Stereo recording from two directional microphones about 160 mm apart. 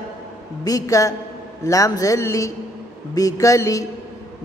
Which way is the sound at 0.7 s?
20° left (ahead or behind).